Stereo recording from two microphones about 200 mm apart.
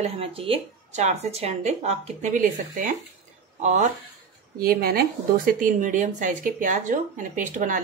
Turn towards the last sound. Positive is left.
turn(degrees=-40)  # may be behind; listen again after turning